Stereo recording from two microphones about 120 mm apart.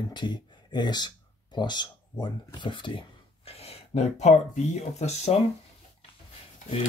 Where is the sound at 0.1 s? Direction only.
40° left (ahead or behind); by 5.4 s 65° left (ahead or behind).